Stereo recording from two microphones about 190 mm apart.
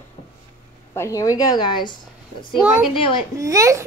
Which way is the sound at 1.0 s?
15° left (ahead or behind).